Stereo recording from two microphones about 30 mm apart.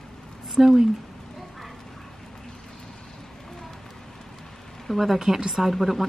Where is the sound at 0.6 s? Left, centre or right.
Centre.